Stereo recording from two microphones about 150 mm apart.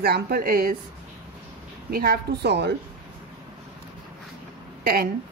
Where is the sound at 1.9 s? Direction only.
90° right.